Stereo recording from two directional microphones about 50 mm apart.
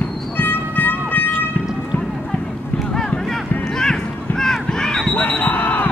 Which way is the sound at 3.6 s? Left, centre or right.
Centre.